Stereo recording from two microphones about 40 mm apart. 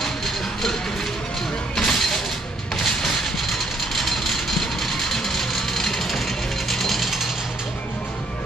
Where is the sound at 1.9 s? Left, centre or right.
Centre.